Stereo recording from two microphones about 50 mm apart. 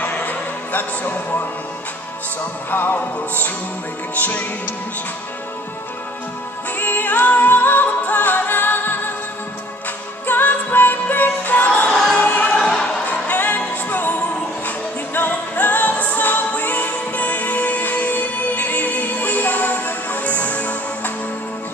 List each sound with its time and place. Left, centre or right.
0.0 s music: left
2.7 s music: left
6.8 s music: left
10.2 s music: left
12.6 s choir: centre
13.0 s music: left